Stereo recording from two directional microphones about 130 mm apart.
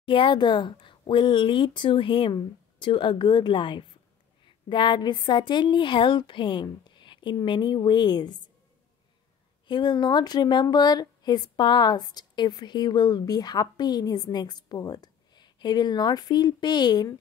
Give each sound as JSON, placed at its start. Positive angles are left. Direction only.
{"t": 0.0, "sound": "speech", "side_deg": 40}
{"t": 9.7, "sound": "speech", "side_deg": 35}